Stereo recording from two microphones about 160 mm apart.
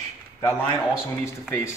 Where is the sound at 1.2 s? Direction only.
15° left (ahead or behind).